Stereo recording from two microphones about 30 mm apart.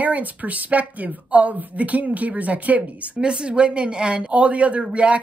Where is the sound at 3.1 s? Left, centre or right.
Right.